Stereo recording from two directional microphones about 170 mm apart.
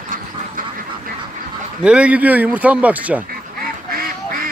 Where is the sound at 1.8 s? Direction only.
5° right (ahead or behind).